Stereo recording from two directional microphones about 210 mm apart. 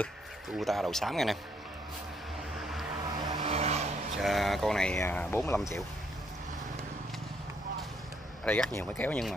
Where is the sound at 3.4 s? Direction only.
30° right (ahead or behind).